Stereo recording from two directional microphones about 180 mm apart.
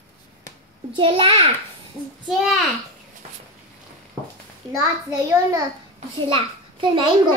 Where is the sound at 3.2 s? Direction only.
40° right (ahead or behind).